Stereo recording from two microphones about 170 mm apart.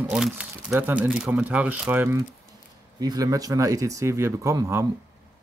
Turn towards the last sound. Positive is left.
turn(degrees=-15)  # may be behind; listen again after turning